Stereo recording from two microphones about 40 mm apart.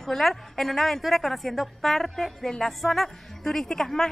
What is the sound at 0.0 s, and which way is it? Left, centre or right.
A woman's voice, centre.